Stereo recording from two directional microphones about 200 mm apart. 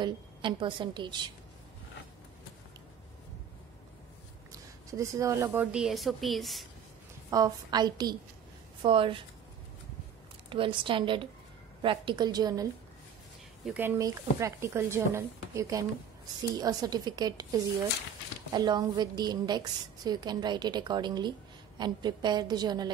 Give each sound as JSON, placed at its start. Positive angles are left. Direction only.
{"t": 0.0, "sound": "a woman's voice", "side_deg": -25}
{"t": 4.5, "sound": "speech", "side_deg": -15}
{"t": 7.2, "sound": "a woman's voice", "side_deg": -20}
{"t": 10.5, "sound": "a woman's voice", "side_deg": -25}
{"t": 13.7, "sound": "a woman's voice", "side_deg": -10}